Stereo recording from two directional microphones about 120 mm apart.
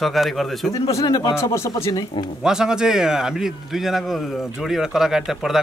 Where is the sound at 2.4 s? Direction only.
5° right (ahead or behind).